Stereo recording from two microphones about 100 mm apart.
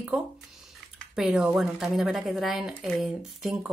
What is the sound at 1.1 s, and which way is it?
Speech, 10° right (ahead or behind).